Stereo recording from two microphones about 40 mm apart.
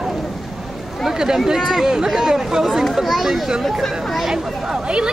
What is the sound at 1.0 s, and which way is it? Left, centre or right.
Speech, centre.